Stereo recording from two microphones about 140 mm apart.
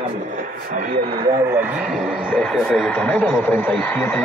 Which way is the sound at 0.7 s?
65° right (ahead or behind).